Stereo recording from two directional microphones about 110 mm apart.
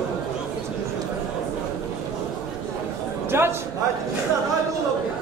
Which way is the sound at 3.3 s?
20° right (ahead or behind).